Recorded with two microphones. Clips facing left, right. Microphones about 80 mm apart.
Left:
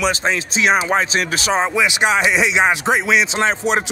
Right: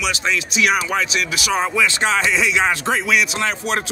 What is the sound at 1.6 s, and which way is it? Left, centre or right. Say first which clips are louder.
Speech: left 1 dB; centre.